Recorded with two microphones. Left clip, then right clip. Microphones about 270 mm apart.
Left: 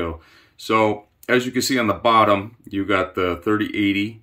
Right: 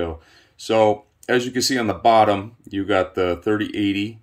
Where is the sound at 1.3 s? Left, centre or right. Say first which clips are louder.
Even; centre.